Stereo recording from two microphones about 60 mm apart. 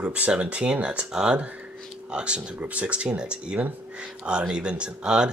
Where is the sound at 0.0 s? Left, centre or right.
Centre.